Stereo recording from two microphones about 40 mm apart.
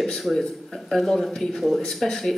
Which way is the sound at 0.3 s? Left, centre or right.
Centre.